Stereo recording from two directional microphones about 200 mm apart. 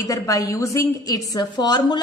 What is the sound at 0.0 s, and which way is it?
A woman's voice, 15° left (ahead or behind).